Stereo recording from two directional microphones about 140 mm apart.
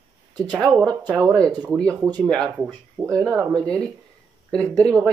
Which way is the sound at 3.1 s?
25° right (ahead or behind).